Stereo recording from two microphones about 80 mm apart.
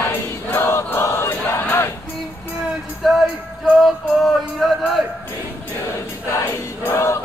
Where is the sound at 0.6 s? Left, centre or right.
Left.